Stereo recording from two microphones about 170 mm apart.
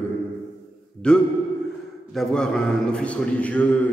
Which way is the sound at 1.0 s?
5° left (ahead or behind).